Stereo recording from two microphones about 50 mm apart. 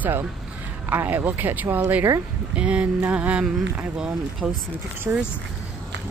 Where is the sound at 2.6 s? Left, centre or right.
Right.